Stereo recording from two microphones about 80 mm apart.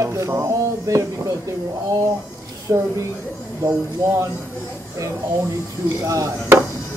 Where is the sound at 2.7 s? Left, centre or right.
Right.